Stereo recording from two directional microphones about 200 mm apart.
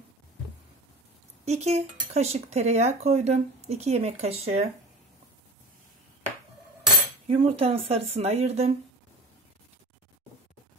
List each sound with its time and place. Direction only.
1.4 s speech: 35° right (ahead or behind)
7.2 s speech: 30° right (ahead or behind)